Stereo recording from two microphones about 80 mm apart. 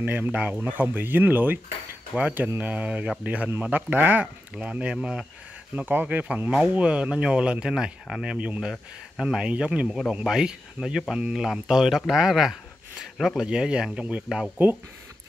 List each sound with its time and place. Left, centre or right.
0.0 s speech: right